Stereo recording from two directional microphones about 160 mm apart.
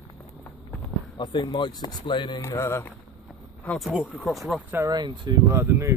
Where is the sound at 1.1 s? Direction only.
30° left (ahead or behind).